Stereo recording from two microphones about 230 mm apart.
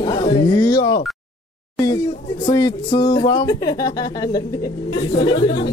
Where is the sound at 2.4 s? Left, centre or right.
Centre.